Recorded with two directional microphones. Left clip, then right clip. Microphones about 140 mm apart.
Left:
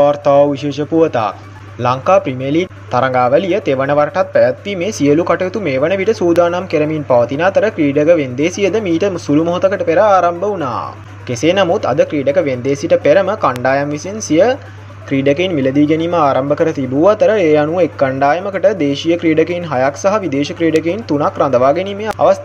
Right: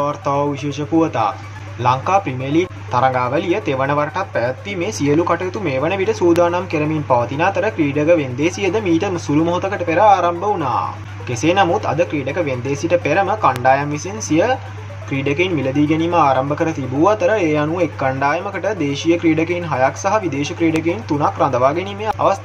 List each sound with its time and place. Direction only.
0.0 s speech: 40° left (ahead or behind)